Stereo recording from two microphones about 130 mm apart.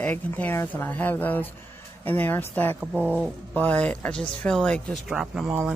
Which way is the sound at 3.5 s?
10° left (ahead or behind).